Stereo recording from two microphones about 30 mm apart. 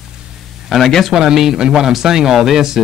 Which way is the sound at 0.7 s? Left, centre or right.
Right.